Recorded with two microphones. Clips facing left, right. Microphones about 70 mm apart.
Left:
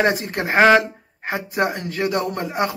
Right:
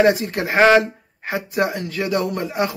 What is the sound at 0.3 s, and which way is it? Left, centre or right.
Speech, left.